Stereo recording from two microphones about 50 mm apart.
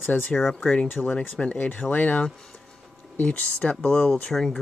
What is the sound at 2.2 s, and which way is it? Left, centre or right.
Speech, centre.